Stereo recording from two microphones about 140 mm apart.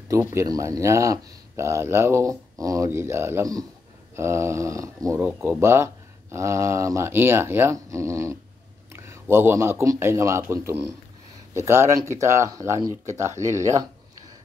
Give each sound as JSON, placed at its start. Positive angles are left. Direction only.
{"t": 0.1, "sound": "speech", "side_deg": -20}
{"t": 13.0, "sound": "speech", "side_deg": -55}